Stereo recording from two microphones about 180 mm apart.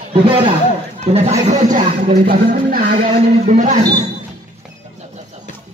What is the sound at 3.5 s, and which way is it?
Speech, 40° right (ahead or behind).